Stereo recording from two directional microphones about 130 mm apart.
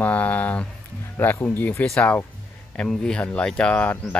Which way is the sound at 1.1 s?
15° left (ahead or behind).